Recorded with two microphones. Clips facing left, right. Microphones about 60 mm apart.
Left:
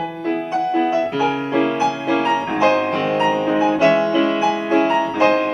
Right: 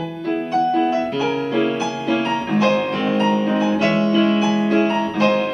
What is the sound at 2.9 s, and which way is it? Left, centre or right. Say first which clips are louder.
Music: left 1 dB; centre.